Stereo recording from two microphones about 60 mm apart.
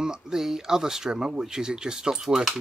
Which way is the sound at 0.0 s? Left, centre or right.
Centre.